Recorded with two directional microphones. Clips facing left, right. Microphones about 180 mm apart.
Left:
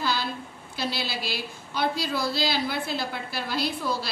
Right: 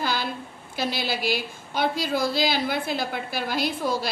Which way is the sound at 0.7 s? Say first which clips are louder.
Right 3 dB; 50° right (ahead or behind).